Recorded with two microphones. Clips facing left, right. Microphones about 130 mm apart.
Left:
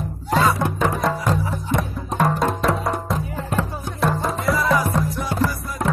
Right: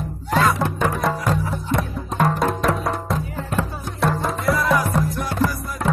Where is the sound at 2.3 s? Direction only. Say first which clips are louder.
Even; centre (ahead or behind).